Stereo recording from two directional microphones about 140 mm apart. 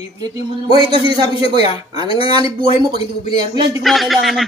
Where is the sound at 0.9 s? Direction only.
35° right (ahead or behind).